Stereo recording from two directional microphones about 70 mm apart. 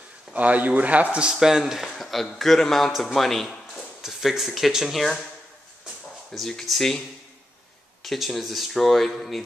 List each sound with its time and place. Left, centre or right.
0.3 s speech: right
1.1 s a man's voice: centre
6.3 s speech: centre
8.0 s speech: centre